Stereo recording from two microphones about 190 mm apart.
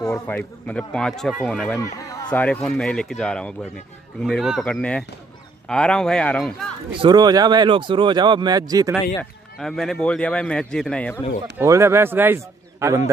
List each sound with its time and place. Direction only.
0.0 s speech: 10° left (ahead or behind)
6.9 s speech: 25° right (ahead or behind)
9.2 s speech: centre (ahead or behind)
11.5 s a man's voice: 15° right (ahead or behind)